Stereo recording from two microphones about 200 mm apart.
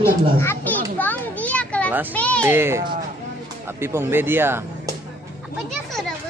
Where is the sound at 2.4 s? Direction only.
10° right (ahead or behind).